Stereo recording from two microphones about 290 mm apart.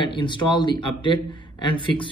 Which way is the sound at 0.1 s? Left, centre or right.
Centre.